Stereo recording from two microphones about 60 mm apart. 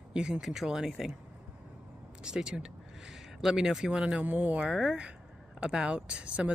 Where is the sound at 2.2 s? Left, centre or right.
Centre.